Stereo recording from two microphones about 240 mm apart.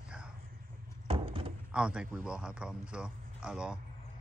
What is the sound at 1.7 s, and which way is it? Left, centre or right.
A man's voice, centre.